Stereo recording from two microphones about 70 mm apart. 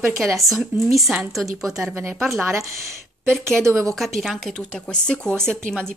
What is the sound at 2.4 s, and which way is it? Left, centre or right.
Speech, right.